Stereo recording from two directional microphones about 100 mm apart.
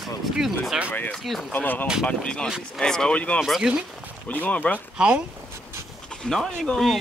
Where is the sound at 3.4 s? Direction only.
Centre (ahead or behind).